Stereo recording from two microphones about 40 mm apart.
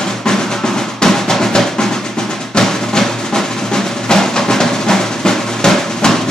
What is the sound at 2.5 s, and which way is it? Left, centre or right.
Music, centre.